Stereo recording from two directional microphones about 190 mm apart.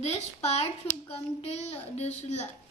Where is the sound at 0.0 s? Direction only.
35° left (ahead or behind).